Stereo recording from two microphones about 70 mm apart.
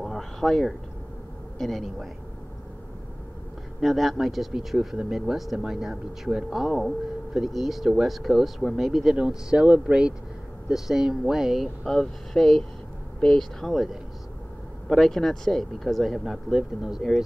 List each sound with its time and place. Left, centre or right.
0.0 s a sound: centre
1.6 s speech: centre
3.8 s speech: centre
14.9 s speech: centre